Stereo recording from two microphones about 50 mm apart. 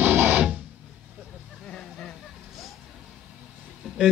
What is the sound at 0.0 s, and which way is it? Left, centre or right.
Music, right.